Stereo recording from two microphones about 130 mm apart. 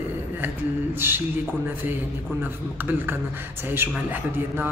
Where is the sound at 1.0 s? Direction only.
20° right (ahead or behind).